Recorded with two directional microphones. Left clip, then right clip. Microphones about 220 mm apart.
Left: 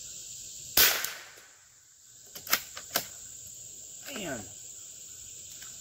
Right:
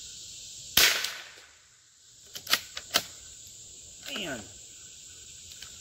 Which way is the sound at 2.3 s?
Centre (ahead or behind).